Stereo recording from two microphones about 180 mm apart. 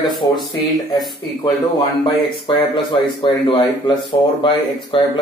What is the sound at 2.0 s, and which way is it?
Speech, 25° left (ahead or behind).